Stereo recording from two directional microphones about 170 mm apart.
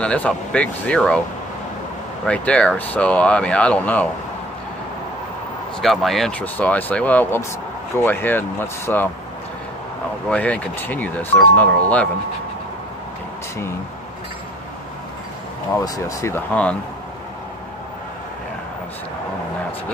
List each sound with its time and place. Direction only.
0.0 s speech: 5° left (ahead or behind)
2.2 s speech: 5° left (ahead or behind)
5.8 s speech: centre (ahead or behind)
10.3 s speech: 10° left (ahead or behind)
15.8 s speech: 20° left (ahead or behind)